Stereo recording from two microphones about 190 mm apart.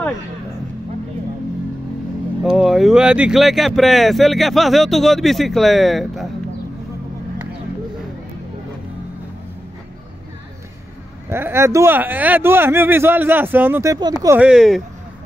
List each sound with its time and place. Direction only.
2.4 s speech: centre (ahead or behind)
11.2 s speech: 15° right (ahead or behind)